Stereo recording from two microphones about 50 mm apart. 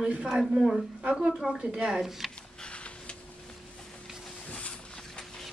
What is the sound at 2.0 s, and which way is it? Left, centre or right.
Speech, centre.